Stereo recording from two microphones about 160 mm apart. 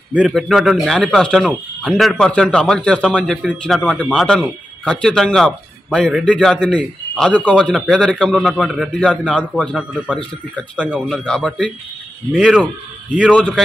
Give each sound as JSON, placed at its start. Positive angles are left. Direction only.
{"t": 0.1, "sound": "a man's voice", "side_deg": -5}
{"t": 10.9, "sound": "a man's voice", "side_deg": 5}
{"t": 12.3, "sound": "a man's voice", "side_deg": -5}
{"t": 13.2, "sound": "a man's voice", "side_deg": 5}